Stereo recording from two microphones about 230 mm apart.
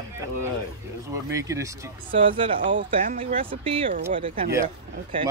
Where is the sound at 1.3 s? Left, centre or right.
Centre.